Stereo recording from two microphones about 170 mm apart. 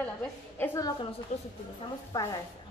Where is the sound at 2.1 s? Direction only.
20° left (ahead or behind).